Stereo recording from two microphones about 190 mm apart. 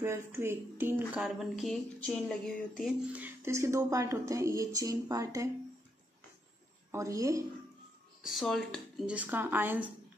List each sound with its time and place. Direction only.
0.0 s speech: 15° right (ahead or behind)
6.9 s speech: 15° right (ahead or behind)
8.2 s speech: centre (ahead or behind)